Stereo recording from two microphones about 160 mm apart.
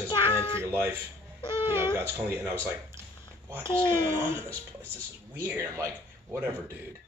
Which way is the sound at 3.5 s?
15° right (ahead or behind).